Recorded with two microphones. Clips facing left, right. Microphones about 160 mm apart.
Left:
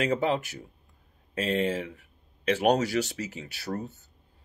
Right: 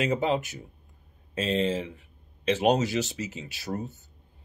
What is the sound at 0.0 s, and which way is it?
Speech, 20° right (ahead or behind).